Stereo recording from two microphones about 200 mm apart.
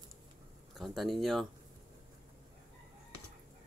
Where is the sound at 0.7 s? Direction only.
Centre (ahead or behind).